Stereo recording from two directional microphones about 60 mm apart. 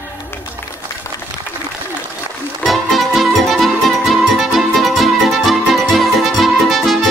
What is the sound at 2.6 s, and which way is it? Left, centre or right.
Music, centre.